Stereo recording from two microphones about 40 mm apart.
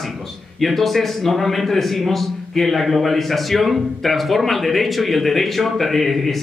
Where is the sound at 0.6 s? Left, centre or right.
Centre.